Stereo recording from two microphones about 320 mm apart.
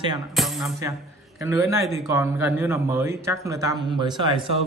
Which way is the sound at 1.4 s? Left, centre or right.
Centre.